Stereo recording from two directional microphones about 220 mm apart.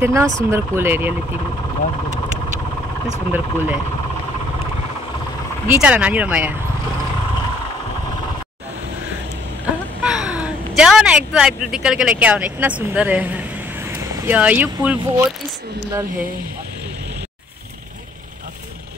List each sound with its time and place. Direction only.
0.0 s speech: 10° right (ahead or behind)
3.3 s speech: 10° right (ahead or behind)
5.7 s speech: 5° right (ahead or behind)
10.0 s speech: 5° right (ahead or behind)